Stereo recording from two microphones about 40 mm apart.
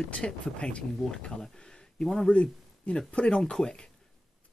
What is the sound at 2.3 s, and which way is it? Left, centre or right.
Speech, left.